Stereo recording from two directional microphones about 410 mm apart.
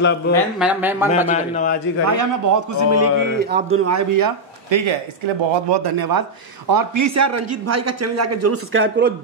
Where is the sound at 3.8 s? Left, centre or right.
Right.